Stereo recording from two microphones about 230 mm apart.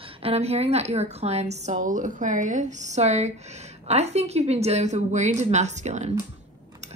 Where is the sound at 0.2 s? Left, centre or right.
Right.